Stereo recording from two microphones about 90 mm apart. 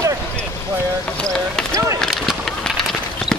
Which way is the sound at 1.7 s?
35° right (ahead or behind).